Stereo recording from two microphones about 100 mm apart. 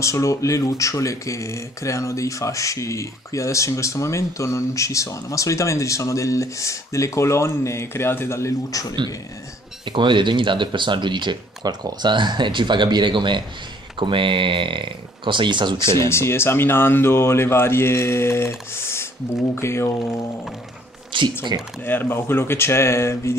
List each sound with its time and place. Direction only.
0.0 s speech: 30° left (ahead or behind)
9.8 s speech: 50° right (ahead or behind)
16.1 s speech: 25° left (ahead or behind)
18.8 s a sound: 25° left (ahead or behind)
19.5 s speech: 25° left (ahead or behind)
21.1 s speech: 55° right (ahead or behind)
21.8 s speech: 20° left (ahead or behind)